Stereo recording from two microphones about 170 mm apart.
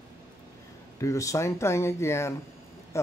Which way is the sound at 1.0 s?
20° left (ahead or behind).